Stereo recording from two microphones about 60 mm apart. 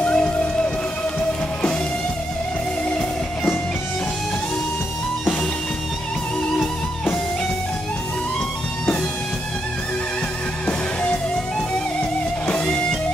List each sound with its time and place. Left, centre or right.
0.0 s music: centre
12.4 s music: centre